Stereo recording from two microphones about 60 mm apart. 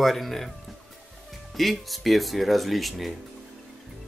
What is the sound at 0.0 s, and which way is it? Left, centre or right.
Speech, centre.